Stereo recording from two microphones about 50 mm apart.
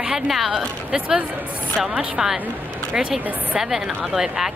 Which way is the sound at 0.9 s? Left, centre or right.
Centre.